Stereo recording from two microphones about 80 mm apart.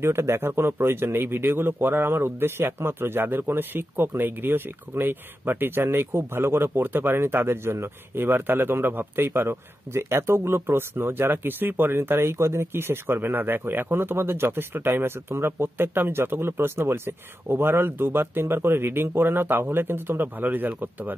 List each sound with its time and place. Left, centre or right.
0.0 s a man's voice: right